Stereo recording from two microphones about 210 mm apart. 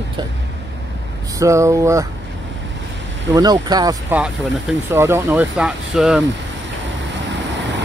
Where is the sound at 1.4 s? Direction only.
15° right (ahead or behind).